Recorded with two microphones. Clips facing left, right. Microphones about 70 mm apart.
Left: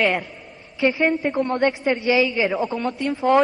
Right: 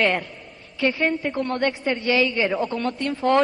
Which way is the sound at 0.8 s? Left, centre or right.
Centre.